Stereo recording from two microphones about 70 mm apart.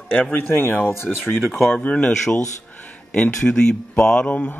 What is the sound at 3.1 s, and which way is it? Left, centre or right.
Speech, centre.